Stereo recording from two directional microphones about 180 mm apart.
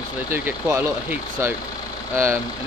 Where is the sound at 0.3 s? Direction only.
10° right (ahead or behind).